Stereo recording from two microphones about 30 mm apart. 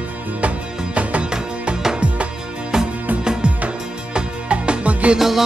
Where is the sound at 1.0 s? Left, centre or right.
Right.